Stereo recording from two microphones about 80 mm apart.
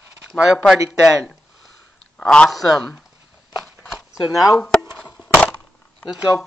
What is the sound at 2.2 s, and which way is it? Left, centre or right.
Speech, centre.